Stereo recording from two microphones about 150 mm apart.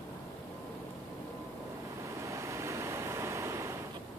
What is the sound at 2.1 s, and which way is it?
Waves, 20° right (ahead or behind).